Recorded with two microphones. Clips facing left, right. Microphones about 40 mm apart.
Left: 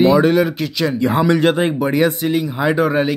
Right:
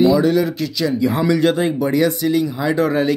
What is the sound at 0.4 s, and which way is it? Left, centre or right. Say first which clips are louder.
Speech: left 2 dB; left.